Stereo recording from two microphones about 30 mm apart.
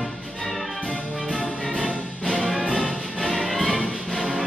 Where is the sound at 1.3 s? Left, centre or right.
Centre.